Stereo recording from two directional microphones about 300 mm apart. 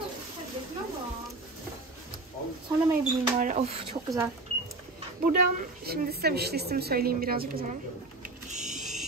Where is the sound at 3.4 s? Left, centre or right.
Right.